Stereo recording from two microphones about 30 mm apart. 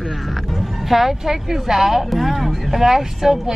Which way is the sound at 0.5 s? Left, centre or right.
Centre.